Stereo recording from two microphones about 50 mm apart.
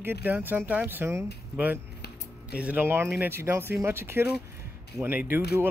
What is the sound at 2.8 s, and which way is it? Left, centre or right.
Speech, right.